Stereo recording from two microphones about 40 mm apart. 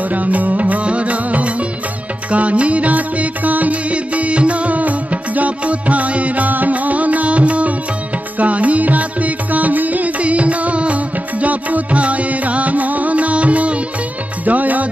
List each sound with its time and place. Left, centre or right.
0.1 s music: right